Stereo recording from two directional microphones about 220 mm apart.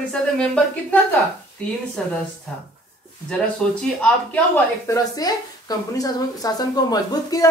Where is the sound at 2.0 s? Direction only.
5° left (ahead or behind).